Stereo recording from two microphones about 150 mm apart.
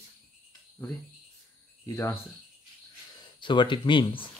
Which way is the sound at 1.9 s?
15° left (ahead or behind).